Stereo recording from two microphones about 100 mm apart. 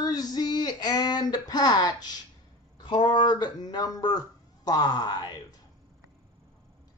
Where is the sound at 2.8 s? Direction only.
55° left (ahead or behind).